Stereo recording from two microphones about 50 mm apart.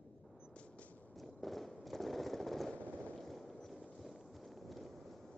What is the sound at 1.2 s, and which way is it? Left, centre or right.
Fireworks, centre.